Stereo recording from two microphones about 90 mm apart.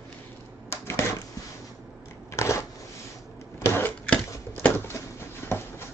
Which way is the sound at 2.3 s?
30° left (ahead or behind).